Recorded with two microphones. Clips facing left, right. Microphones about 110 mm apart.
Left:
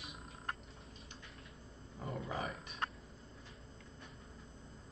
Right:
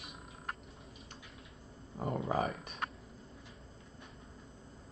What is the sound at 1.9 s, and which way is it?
Speech, 45° right (ahead or behind).